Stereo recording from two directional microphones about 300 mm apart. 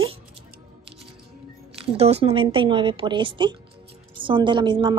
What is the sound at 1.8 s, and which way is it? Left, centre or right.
A woman's voice, right.